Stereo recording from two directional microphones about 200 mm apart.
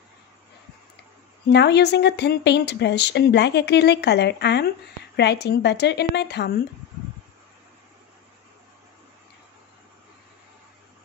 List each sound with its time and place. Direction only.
1.5 s speech: 55° left (ahead or behind)